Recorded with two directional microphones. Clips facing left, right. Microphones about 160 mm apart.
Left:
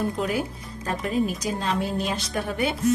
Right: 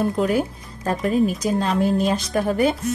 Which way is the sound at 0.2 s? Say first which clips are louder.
Right 6 dB; 45° right (ahead or behind).